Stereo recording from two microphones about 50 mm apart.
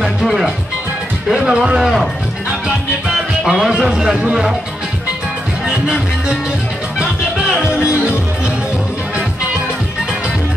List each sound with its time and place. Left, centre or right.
0.0 s music: centre
1.3 s music: centre
1.8 s speech: centre
3.1 s speech: centre
4.3 s music: centre
5.7 s music: centre